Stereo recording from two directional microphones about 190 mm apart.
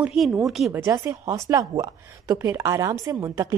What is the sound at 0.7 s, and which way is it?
A woman's voice, 15° right (ahead or behind).